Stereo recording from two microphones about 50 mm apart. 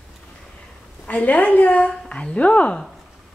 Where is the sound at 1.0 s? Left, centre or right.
Left.